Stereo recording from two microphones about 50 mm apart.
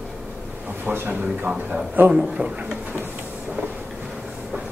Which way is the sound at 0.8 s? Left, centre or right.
Right.